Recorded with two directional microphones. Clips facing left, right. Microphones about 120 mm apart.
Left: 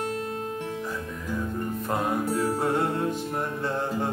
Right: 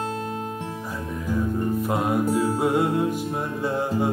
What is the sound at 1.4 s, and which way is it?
Music, 10° right (ahead or behind).